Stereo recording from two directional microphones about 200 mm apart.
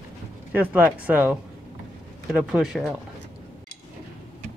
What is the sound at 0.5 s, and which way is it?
Speech, 10° right (ahead or behind).